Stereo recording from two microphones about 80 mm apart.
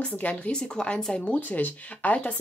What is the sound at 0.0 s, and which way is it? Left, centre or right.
Speech, centre.